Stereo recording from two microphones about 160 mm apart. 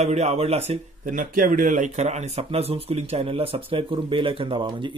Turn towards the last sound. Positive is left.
turn(degrees=-30)  # may be behind; listen again after turning